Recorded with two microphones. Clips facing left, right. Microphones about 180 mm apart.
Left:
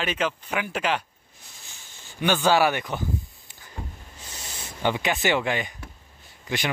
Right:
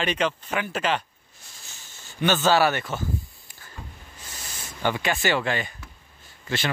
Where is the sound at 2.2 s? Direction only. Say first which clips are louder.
Even; 10° left (ahead or behind).